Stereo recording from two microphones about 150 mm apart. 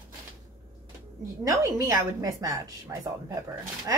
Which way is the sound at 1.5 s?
25° right (ahead or behind).